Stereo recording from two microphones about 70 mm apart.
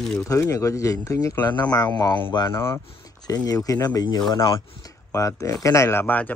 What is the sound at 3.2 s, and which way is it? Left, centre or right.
Speech, left.